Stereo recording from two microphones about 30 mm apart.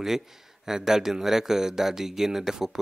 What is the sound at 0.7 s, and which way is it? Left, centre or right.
Speech, centre.